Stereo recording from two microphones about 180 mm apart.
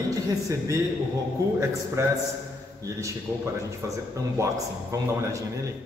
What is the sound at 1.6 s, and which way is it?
A man's voice, 15° right (ahead or behind).